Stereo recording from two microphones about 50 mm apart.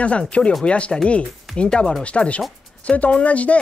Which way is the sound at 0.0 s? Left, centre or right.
Left.